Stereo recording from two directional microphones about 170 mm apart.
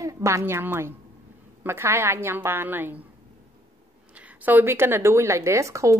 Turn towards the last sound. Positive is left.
turn(degrees=-15)  # may be behind; listen again after turning